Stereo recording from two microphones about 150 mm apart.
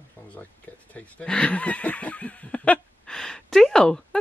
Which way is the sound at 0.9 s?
10° left (ahead or behind).